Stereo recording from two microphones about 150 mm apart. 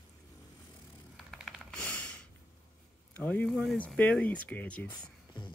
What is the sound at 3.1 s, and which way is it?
Speech, 10° left (ahead or behind).